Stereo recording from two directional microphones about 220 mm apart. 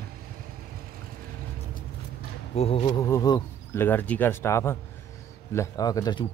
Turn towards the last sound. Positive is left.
turn(degrees=20)  # may be behind; listen again after turning